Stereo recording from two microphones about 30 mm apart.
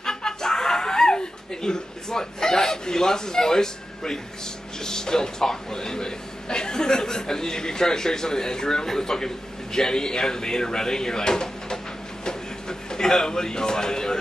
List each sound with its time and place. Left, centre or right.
0.0 s chuckle: left
4.8 s a man's voice: left
12.3 s a sound: left